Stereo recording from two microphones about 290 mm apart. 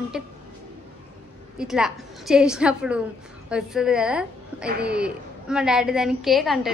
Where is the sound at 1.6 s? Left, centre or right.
Centre.